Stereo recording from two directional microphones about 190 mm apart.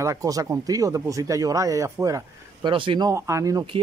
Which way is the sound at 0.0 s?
15° right (ahead or behind).